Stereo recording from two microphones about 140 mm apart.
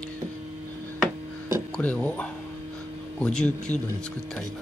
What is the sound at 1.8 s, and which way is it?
Speech, 10° left (ahead or behind).